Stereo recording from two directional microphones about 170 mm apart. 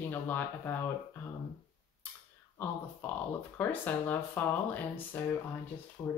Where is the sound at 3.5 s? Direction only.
10° left (ahead or behind).